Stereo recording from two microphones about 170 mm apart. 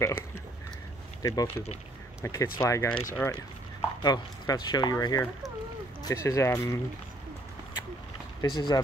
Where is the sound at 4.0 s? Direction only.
25° left (ahead or behind).